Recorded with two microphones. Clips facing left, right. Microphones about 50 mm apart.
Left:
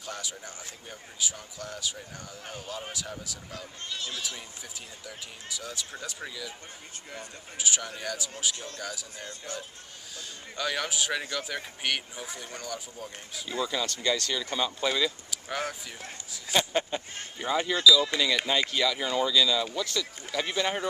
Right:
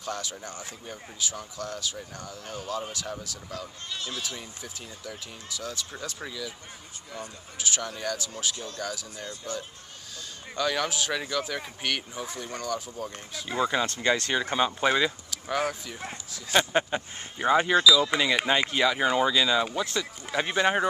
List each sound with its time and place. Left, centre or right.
0.0 s speech: centre
5.0 s speech: centre
7.5 s speech: centre
10.6 s speech: centre
13.5 s speech: right
15.5 s speech: centre
16.5 s speech: right